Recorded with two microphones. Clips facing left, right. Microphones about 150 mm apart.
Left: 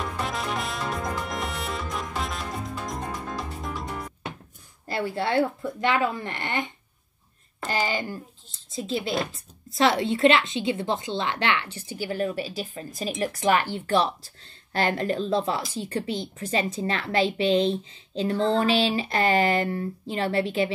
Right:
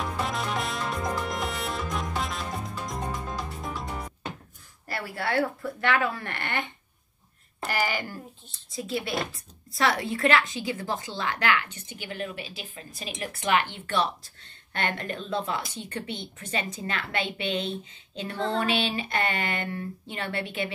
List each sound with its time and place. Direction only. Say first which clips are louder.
0.0 s music: even; centre (ahead or behind)
4.8 s speech: left 5 dB; 25° left (ahead or behind)
7.7 s speech: left 2 dB; 20° left (ahead or behind); by 20.7 s 35° left (ahead or behind)